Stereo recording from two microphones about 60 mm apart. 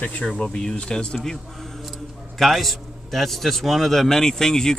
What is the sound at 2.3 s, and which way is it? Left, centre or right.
A man's voice, centre.